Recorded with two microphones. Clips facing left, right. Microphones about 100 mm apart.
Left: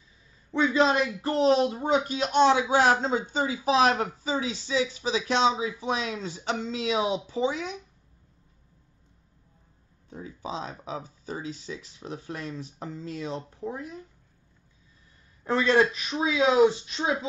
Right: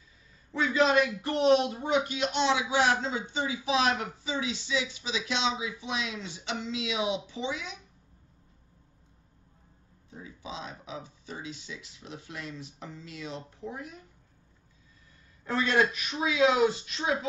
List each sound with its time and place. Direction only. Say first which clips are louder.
0.5 s speech: left 3 dB; 30° left (ahead or behind)
10.2 s speech: left 6 dB; 40° left (ahead or behind)
15.4 s speech: left 4 dB; 30° left (ahead or behind)